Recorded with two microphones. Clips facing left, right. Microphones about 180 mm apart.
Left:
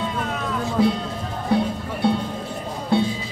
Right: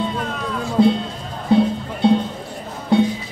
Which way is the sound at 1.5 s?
20° right (ahead or behind).